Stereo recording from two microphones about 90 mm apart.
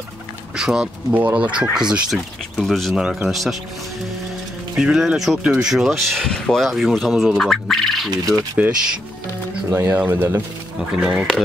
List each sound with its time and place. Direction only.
0.6 s speech: 5° right (ahead or behind)
2.5 s speech: 5° left (ahead or behind)
4.7 s speech: 10° right (ahead or behind)
8.6 s speech: 15° right (ahead or behind)
9.7 s speech: 30° right (ahead or behind)
10.9 s speech: 10° right (ahead or behind)